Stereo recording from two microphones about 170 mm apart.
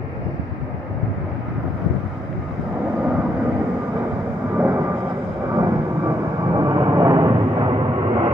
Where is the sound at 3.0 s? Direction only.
10° right (ahead or behind).